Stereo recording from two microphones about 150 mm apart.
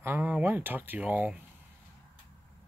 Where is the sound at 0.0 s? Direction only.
15° right (ahead or behind).